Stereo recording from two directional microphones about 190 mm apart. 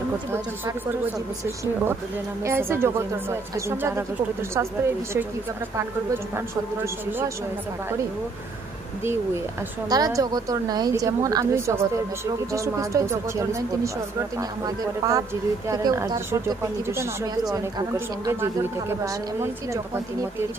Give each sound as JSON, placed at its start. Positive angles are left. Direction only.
{"t": 0.3, "sound": "speech", "side_deg": -15}
{"t": 2.4, "sound": "speech", "side_deg": -15}
{"t": 6.3, "sound": "speech", "side_deg": -10}
{"t": 9.8, "sound": "a woman's voice", "side_deg": -20}
{"t": 15.0, "sound": "speech", "side_deg": -15}